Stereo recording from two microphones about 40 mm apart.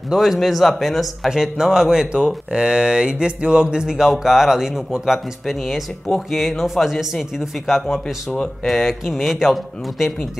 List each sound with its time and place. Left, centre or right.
0.1 s speech: centre
1.3 s speech: centre
8.6 s speech: centre